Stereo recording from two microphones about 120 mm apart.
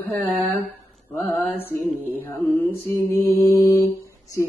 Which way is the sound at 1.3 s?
15° left (ahead or behind).